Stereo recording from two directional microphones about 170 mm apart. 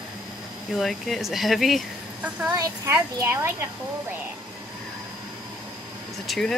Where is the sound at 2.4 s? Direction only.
20° right (ahead or behind).